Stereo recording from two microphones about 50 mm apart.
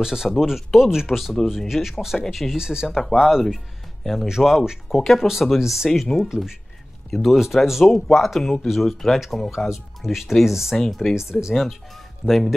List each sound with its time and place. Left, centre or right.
0.0 s speech: centre
2.9 s speech: centre
4.0 s speech: centre
4.3 s speech: centre
4.9 s speech: centre
5.2 s speech: centre
7.1 s speech: centre
11.1 s speech: centre
12.3 s speech: centre